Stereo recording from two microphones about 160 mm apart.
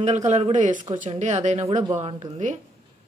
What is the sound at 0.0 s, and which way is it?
Speech, 45° right (ahead or behind).